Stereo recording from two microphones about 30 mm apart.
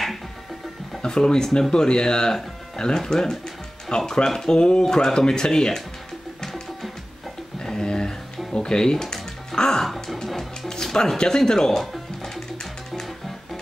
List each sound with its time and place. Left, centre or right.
1.0 s speech: left
7.6 s a sound: left
8.5 s music: left; by 10.7 s centre
10.7 s speech: left